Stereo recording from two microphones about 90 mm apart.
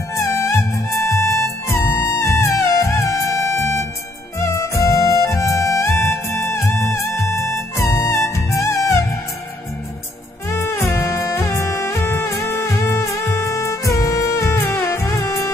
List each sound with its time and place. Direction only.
0.4 s music: 35° left (ahead or behind)
10.6 s music: 30° left (ahead or behind)